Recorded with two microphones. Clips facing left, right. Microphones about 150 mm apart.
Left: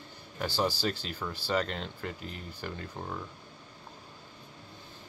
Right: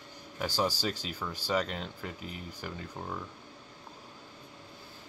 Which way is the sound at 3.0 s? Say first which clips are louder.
Right 1 dB; centre (ahead or behind).